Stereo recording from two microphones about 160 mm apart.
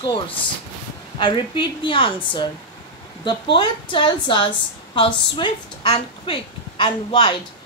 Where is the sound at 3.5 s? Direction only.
30° left (ahead or behind).